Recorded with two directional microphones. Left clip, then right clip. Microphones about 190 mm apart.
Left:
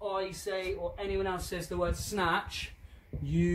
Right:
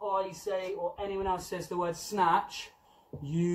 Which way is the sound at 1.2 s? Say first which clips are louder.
Right 2 dB; 25° left (ahead or behind).